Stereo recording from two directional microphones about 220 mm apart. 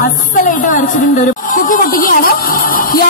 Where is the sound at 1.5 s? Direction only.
40° left (ahead or behind).